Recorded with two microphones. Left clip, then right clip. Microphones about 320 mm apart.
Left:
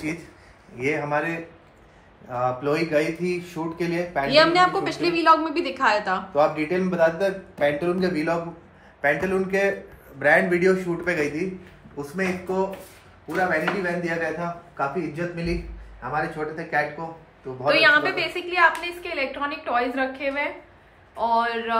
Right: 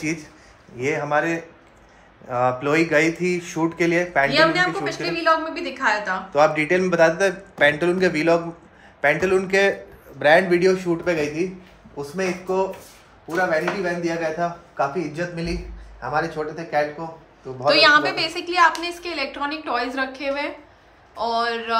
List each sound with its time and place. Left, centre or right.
0.7 s a man's voice: right
4.3 s a woman's voice: centre
6.3 s a man's voice: right
14.8 s a man's voice: right; by 21.7 s centre